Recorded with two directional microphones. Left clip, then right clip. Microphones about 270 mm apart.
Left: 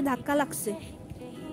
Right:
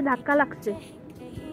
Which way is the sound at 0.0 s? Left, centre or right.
Centre.